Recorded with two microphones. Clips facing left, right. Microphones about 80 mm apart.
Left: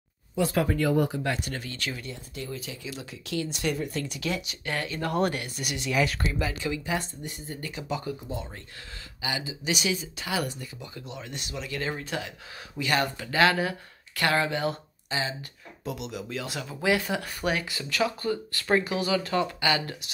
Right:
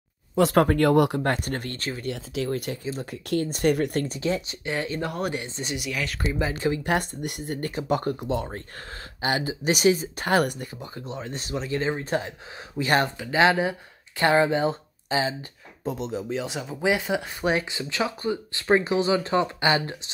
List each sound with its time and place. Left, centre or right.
0.4 s speech: right
1.2 s speech: right
1.8 s speech: right
2.0 s speech: right
2.8 s speech: right
4.2 s speech: right
5.9 s speech: centre
6.4 s speech: right
6.9 s speech: right
11.0 s speech: right
13.2 s speech: right